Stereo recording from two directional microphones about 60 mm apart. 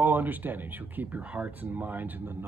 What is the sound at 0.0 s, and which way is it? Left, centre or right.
Speech, right.